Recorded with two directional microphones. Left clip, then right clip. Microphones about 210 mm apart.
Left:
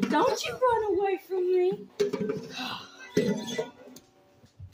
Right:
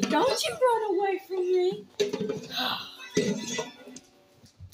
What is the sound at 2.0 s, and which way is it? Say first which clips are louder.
Speech: even; centre (ahead or behind).